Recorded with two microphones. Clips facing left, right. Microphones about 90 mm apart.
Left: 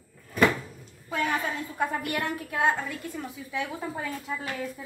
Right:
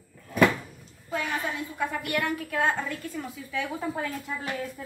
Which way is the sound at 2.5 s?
5° left (ahead or behind).